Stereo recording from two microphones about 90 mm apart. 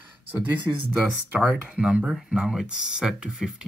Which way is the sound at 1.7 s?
10° right (ahead or behind).